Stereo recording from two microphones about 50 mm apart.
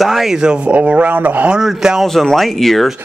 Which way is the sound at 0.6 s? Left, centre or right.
Right.